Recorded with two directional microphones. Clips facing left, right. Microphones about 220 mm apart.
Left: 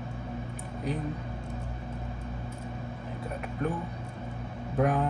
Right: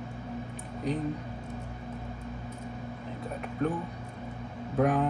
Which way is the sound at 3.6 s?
Centre (ahead or behind).